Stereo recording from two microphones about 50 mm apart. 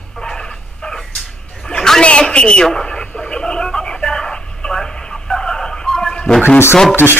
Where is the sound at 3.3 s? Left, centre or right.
Centre.